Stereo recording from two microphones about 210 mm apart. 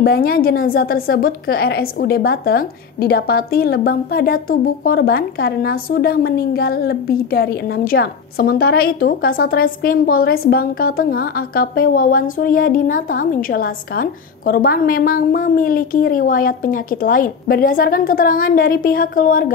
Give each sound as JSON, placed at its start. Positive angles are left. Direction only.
{"t": 0.0, "sound": "a woman's voice", "side_deg": 45}